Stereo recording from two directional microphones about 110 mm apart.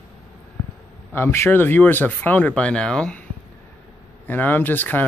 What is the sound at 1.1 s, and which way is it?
Speech, 25° left (ahead or behind).